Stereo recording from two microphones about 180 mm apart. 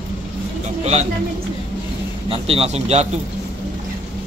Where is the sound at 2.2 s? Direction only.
35° right (ahead or behind).